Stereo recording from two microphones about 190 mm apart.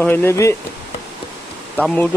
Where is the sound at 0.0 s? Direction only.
10° left (ahead or behind).